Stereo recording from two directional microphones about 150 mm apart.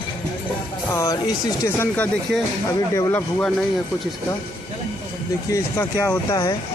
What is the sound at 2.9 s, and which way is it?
Speech, 20° left (ahead or behind).